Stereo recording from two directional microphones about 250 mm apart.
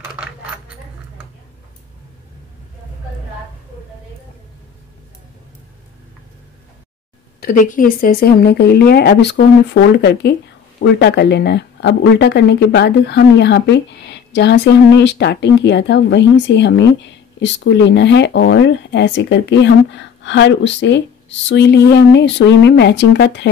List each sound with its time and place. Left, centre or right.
0.0 s coin: centre
7.3 s a woman's voice: left